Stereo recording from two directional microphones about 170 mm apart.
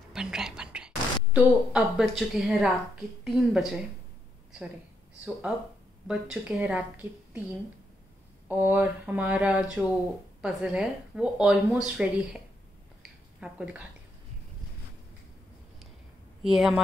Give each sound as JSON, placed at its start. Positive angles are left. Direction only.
{"t": 0.1, "sound": "speech", "side_deg": -5}
{"t": 6.0, "sound": "speech", "side_deg": -5}
{"t": 8.5, "sound": "speech", "side_deg": -10}
{"t": 13.0, "sound": "a sound", "side_deg": -5}
{"t": 16.4, "sound": "speech", "side_deg": 0}